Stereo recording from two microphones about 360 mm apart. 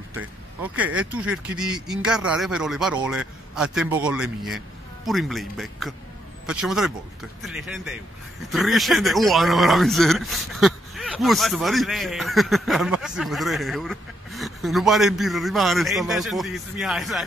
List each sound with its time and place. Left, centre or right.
0.1 s speech: centre